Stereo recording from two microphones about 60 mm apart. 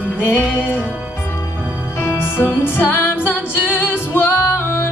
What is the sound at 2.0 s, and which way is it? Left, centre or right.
Music, left.